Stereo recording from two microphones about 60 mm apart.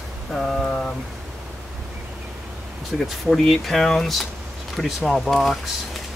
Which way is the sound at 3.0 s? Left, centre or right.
Centre.